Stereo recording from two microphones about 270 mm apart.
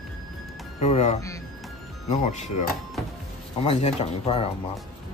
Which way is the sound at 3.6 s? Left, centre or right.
Left.